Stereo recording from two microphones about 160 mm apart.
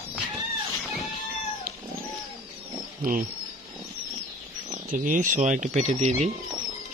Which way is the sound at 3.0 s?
60° right (ahead or behind).